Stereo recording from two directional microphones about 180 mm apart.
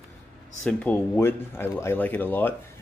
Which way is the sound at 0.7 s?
10° left (ahead or behind).